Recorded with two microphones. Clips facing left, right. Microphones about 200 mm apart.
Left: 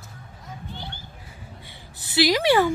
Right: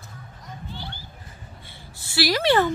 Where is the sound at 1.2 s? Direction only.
15° left (ahead or behind).